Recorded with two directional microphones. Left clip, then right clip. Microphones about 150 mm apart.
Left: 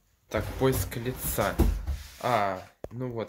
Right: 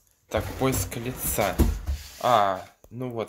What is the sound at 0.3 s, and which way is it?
Speech, 15° left (ahead or behind).